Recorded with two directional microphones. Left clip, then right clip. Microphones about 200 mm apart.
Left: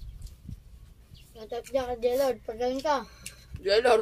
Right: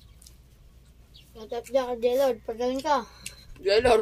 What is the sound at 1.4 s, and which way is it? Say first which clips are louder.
A child's voice: right 3 dB; 20° right (ahead or behind).